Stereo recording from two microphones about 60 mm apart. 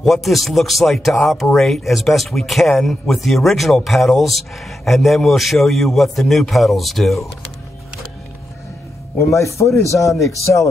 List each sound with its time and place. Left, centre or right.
0.0 s speech: centre
9.2 s speech: left